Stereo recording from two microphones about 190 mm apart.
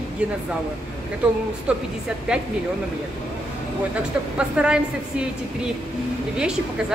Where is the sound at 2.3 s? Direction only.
5° right (ahead or behind).